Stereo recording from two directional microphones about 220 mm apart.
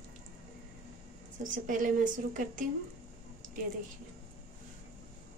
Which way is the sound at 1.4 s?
35° right (ahead or behind).